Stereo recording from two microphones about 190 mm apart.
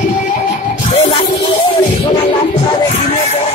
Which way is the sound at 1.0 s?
30° left (ahead or behind).